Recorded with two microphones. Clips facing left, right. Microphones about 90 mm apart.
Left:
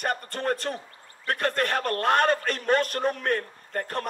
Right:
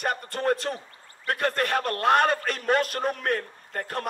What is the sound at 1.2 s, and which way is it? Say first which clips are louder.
A man's voice: even; 40° left (ahead or behind).